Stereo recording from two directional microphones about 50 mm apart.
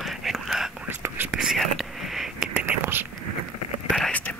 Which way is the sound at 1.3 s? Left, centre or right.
Centre.